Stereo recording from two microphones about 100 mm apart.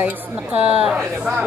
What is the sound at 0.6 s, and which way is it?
Speech, 15° right (ahead or behind).